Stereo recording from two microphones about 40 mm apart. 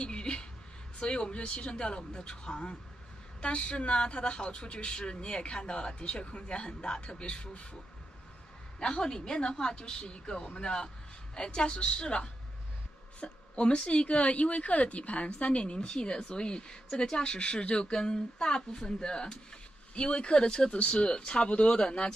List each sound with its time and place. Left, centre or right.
0.0 s a sound: left
0.9 s a woman's voice: left
8.7 s a woman's voice: left